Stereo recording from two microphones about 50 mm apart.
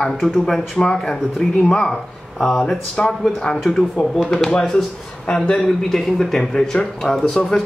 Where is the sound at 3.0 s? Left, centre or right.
Centre.